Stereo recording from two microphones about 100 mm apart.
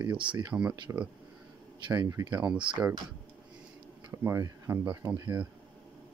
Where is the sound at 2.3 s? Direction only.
10° right (ahead or behind).